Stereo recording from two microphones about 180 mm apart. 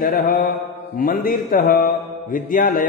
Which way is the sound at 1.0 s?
50° left (ahead or behind).